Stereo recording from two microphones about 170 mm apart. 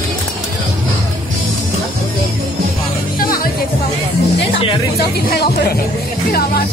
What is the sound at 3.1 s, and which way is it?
Music, 60° left (ahead or behind).